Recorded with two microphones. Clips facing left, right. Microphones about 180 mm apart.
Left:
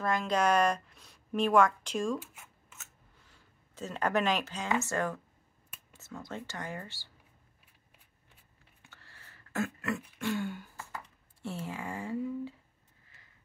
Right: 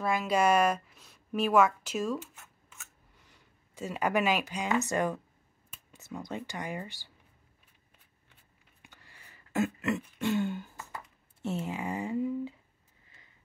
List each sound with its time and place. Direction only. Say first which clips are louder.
0.0 s a woman's voice: right 2 dB; 10° right (ahead or behind)
2.1 s zipper: right 1 dB; 10° left (ahead or behind)
3.7 s speech: right 1 dB; 10° right (ahead or behind)
8.8 s throat clearing: right 1 dB; 15° right (ahead or behind)
11.4 s speech: right 5 dB; 20° right (ahead or behind)